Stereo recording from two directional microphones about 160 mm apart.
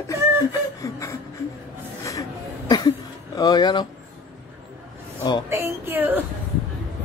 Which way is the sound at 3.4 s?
25° left (ahead or behind).